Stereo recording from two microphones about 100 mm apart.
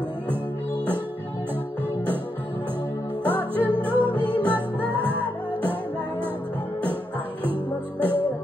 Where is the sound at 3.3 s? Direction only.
20° right (ahead or behind).